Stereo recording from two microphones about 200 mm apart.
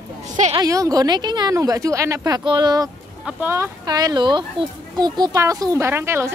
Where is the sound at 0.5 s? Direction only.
15° right (ahead or behind).